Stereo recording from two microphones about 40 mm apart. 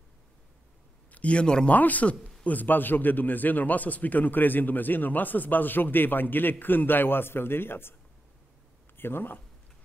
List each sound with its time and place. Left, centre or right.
1.1 s speech: left
1.7 s a man's voice: left
8.9 s speech: left